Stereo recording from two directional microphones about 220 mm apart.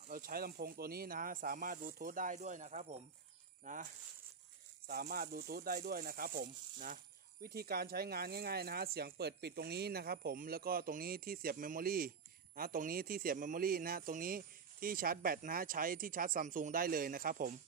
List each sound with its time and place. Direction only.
0.1 s a man's voice: 40° right (ahead or behind)